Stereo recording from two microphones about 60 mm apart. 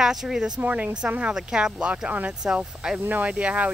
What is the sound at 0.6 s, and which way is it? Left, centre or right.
Speech, right.